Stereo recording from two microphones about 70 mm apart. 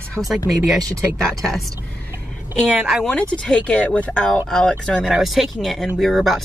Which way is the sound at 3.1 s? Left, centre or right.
Centre.